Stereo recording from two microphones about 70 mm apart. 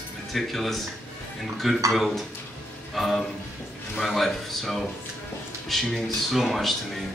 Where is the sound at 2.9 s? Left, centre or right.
Centre.